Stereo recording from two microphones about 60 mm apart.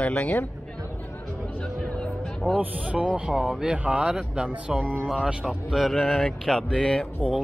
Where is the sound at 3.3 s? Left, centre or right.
Centre.